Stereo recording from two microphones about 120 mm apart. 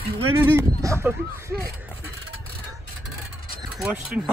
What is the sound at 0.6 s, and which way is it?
Speech, 20° right (ahead or behind).